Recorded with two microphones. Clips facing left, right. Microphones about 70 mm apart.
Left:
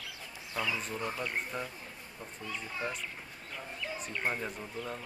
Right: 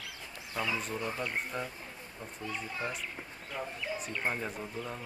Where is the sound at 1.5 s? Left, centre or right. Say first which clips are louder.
Right 1 dB; centre.